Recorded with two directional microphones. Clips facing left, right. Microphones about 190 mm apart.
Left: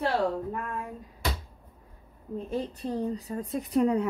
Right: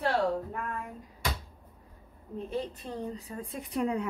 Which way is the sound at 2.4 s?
40° left (ahead or behind).